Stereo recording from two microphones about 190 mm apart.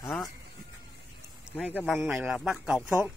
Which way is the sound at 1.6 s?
5° left (ahead or behind).